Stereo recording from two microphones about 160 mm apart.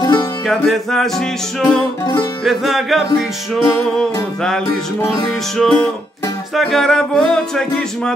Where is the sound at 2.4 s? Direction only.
Centre (ahead or behind).